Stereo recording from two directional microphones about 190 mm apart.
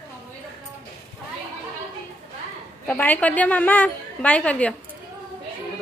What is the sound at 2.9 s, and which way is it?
A woman's voice, 10° left (ahead or behind).